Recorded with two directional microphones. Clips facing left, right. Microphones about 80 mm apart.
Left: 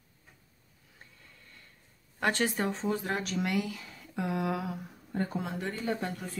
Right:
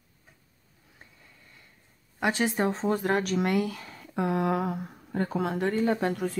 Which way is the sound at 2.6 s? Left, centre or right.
Right.